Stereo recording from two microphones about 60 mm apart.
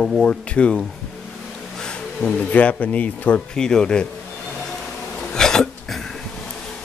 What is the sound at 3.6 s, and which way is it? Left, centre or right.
Speech, centre.